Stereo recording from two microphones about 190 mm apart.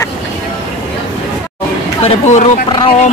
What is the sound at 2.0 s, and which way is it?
Speech, 35° left (ahead or behind).